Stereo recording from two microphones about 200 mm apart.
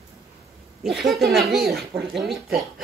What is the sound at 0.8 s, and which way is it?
Speech, centre (ahead or behind).